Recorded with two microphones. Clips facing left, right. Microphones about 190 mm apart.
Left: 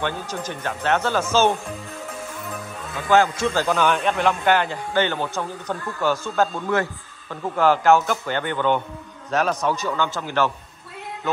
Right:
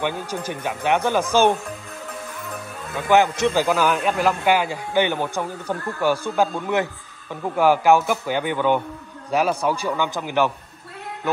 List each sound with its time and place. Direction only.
0.0 s a man's voice: 10° right (ahead or behind)
3.1 s a man's voice: 20° right (ahead or behind)